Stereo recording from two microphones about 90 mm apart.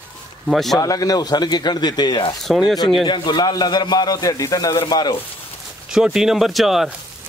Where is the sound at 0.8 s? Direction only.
40° left (ahead or behind).